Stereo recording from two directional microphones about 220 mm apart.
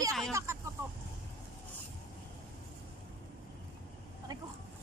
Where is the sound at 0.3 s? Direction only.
15° right (ahead or behind).